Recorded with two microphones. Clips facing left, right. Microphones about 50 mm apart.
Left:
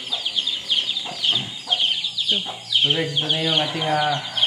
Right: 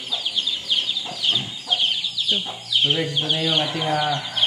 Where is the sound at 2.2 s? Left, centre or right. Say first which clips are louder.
Left 1 dB; centre.